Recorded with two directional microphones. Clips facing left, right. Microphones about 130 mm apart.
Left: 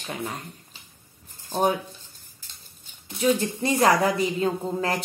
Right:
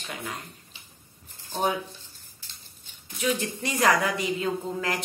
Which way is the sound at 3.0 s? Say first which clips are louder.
Left 5 dB; 30° left (ahead or behind).